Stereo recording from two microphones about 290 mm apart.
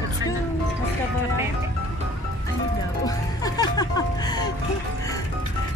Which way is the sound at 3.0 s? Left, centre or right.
Centre.